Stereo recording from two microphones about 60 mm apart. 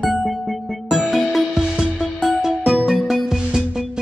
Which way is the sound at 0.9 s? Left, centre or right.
Centre.